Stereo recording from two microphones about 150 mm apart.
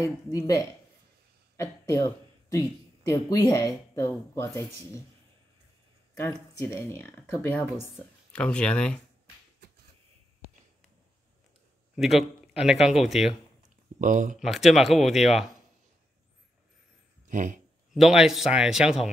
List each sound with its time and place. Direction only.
0.0 s speech: 20° left (ahead or behind)
6.1 s speech: 15° left (ahead or behind)
11.9 s speech: centre (ahead or behind)
13.9 s speech: 60° right (ahead or behind)
14.4 s speech: centre (ahead or behind)
17.3 s speech: 60° right (ahead or behind)
17.9 s speech: centre (ahead or behind)